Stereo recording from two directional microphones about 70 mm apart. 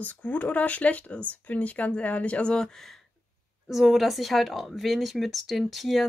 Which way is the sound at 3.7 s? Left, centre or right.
Centre.